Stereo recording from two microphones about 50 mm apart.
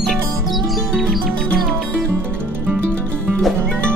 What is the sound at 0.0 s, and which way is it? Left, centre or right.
Music, centre.